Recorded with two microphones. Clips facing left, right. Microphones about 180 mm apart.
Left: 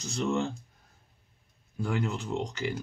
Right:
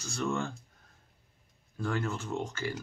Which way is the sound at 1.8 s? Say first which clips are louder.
Left 2 dB; 15° left (ahead or behind).